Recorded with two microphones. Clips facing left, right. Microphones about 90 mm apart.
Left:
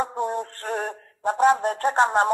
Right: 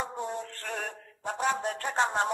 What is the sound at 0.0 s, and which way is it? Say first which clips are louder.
Music: left 8 dB; 50° left (ahead or behind).